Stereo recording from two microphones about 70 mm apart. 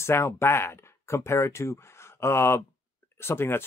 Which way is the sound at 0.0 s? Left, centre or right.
Left.